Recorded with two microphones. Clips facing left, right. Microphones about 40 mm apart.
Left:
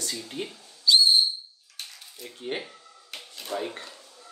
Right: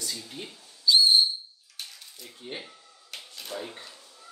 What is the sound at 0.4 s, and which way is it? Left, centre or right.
Speech, left.